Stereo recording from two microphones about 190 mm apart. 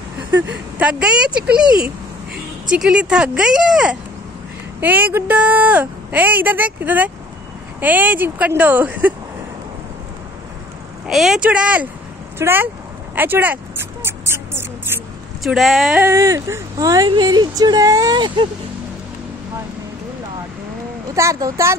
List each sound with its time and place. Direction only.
0.3 s a sound: 70° right (ahead or behind)
0.7 s speech: 5° right (ahead or behind)
2.7 s speech: 5° right (ahead or behind)
11.1 s speech: centre (ahead or behind)
13.1 s a sound: 10° right (ahead or behind)
15.4 s speech: centre (ahead or behind)
16.1 s speech: 15° right (ahead or behind)
21.1 s speech: 15° right (ahead or behind)